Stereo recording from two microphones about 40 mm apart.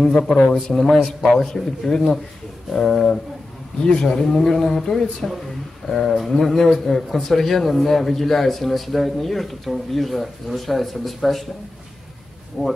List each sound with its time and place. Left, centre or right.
0.0 s speech: centre
0.9 s a man's voice: centre
1.3 s a man's voice: centre
12.6 s a man's voice: centre